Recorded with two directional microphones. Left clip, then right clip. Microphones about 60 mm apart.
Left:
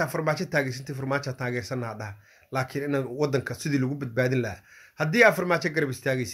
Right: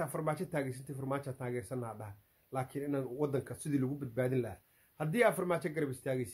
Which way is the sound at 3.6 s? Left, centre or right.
Right.